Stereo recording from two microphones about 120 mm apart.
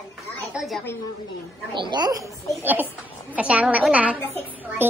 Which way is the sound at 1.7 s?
40° right (ahead or behind).